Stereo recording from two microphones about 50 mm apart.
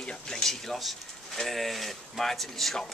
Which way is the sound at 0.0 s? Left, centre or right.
Centre.